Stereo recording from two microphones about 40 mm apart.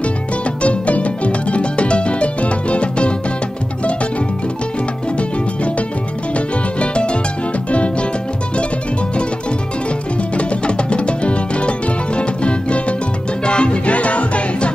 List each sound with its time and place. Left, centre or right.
0.6 s music: left
6.3 s music: left
10.3 s music: left